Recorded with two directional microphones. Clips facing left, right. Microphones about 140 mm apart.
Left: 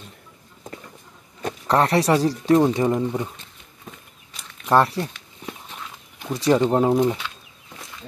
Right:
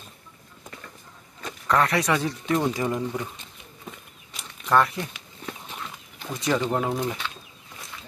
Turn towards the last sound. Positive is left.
turn(degrees=15)  # may be behind; listen again after turning